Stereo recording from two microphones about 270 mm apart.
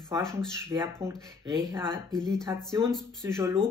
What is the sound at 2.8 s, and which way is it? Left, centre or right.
Speech, centre.